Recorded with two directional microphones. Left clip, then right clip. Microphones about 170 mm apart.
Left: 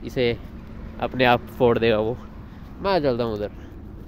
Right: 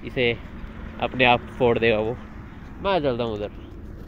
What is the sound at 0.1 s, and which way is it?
Speech, 90° left.